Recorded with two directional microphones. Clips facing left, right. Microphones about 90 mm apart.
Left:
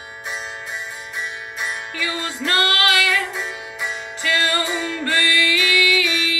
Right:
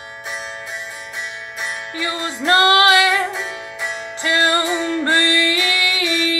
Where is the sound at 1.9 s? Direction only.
25° right (ahead or behind).